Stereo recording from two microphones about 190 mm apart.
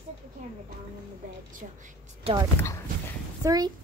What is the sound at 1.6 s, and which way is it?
Speech, 40° right (ahead or behind).